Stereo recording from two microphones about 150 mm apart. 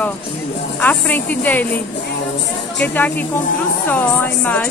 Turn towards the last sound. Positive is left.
turn(degrees=10)  # may be behind; listen again after turning